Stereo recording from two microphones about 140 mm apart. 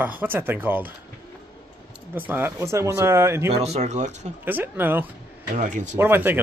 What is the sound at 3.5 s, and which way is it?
Speech, 50° right (ahead or behind).